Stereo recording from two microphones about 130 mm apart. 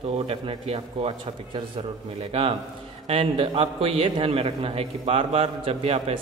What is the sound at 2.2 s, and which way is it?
A man's voice, 50° right (ahead or behind).